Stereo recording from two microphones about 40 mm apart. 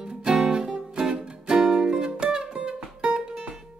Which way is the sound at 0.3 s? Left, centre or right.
Centre.